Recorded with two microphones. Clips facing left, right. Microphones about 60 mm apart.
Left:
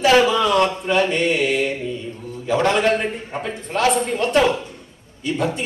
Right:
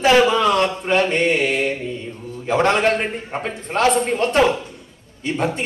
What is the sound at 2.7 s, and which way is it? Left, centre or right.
A man's voice, right.